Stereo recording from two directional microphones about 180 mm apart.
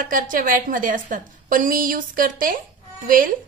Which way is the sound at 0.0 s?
50° right (ahead or behind).